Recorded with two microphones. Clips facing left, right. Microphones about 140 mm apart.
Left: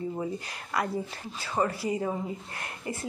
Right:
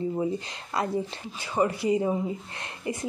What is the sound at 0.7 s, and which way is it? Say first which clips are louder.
Speech: right 2 dB; 25° right (ahead or behind).